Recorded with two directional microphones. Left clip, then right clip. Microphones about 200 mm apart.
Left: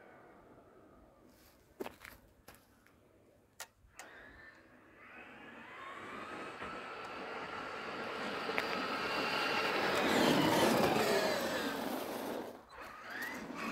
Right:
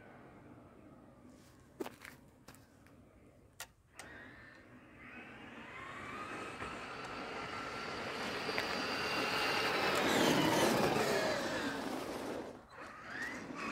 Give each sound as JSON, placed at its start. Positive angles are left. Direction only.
{"t": 1.8, "sound": "whip", "side_deg": 10}
{"t": 3.5, "sound": "clock", "side_deg": 15}
{"t": 5.9, "sound": "vehicle", "side_deg": -30}